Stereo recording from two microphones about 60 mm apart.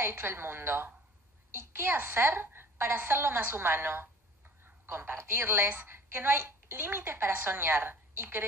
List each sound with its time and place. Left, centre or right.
0.0 s a woman's voice: right